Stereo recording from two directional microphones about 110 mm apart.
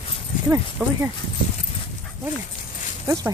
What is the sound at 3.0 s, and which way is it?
Speech, 25° right (ahead or behind).